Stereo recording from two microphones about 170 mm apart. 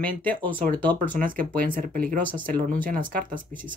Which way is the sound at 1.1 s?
55° right (ahead or behind).